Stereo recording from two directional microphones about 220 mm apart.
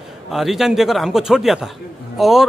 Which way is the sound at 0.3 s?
Centre (ahead or behind).